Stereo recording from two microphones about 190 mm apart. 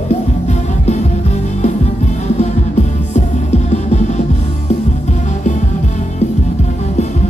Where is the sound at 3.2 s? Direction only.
35° left (ahead or behind).